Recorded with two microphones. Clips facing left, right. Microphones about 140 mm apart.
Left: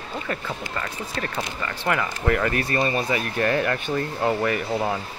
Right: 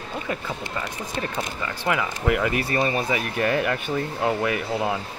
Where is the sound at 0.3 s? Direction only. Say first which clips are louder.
Even; 10° right (ahead or behind).